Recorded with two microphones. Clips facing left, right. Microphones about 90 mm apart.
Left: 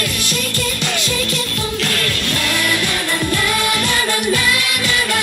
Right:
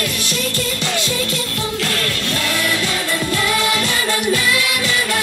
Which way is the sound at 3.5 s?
55° left (ahead or behind).